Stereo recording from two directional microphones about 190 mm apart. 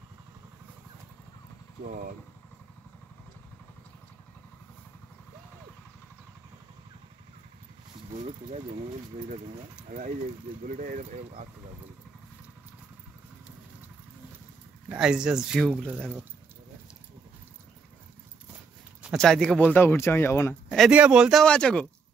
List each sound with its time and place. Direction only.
8.1 s speech: 35° right (ahead or behind)
10.8 s speech: 40° right (ahead or behind)
14.9 s speech: 5° right (ahead or behind)
19.0 s speech: centre (ahead or behind)
20.6 s speech: 5° right (ahead or behind)